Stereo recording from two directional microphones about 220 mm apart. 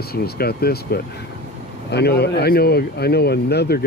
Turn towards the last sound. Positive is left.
turn(degrees=45)  # may be behind; listen again after turning